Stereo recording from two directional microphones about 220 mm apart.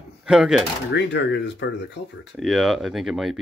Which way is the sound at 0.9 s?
50° left (ahead or behind).